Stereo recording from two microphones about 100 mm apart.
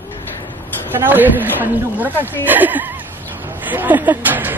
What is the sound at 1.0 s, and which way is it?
Speech, 20° right (ahead or behind).